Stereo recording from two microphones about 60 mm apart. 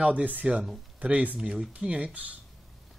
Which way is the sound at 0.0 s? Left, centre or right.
Right.